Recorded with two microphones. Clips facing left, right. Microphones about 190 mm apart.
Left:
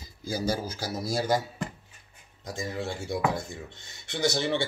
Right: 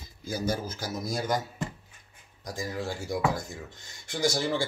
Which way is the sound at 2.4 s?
25° left (ahead or behind).